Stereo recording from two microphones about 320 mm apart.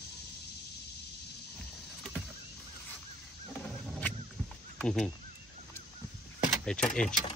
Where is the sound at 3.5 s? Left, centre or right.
Centre.